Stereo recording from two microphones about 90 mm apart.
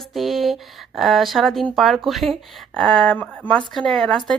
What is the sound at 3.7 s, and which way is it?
Speech, 5° left (ahead or behind).